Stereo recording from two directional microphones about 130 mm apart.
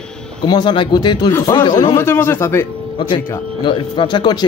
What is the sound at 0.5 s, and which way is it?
Speech, 35° left (ahead or behind).